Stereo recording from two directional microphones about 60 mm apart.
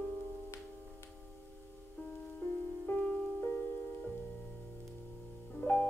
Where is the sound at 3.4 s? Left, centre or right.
Left.